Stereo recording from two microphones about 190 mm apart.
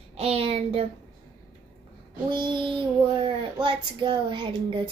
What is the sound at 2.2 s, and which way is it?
A child's voice, 25° right (ahead or behind).